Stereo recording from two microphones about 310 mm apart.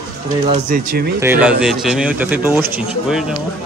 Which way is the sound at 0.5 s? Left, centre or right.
Right.